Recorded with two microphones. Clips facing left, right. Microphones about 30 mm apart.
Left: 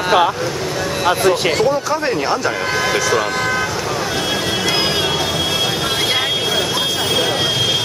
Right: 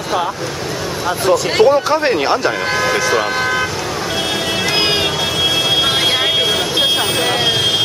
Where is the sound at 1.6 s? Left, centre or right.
Right.